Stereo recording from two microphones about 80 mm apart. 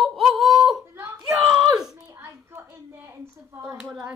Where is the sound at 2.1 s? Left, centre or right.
Right.